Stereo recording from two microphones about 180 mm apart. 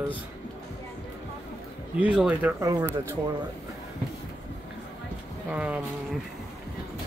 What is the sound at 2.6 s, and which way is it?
Speech, 20° right (ahead or behind).